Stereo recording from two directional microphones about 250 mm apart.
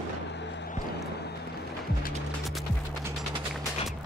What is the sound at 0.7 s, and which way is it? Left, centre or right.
Music, left.